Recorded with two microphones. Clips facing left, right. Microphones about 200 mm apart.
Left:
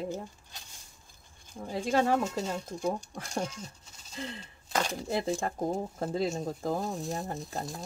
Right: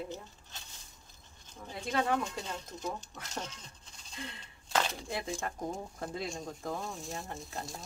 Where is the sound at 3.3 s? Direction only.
10° left (ahead or behind).